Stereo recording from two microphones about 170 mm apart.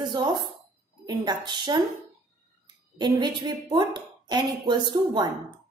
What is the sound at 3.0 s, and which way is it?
A woman's voice, 25° right (ahead or behind).